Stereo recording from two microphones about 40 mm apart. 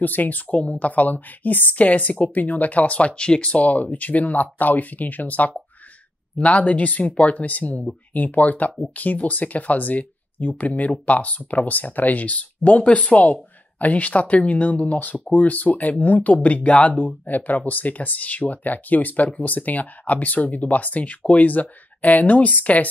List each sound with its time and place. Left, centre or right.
0.0 s speech: left